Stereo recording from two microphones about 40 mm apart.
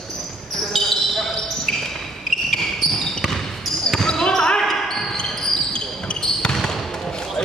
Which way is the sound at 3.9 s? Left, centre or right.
Centre.